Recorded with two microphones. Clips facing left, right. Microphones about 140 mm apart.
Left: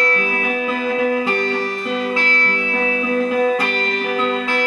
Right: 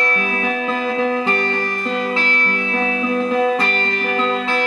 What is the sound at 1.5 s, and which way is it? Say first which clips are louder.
Music: even; 50° right (ahead or behind).